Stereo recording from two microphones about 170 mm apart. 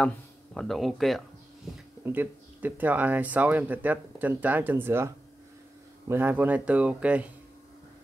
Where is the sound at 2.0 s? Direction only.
10° right (ahead or behind).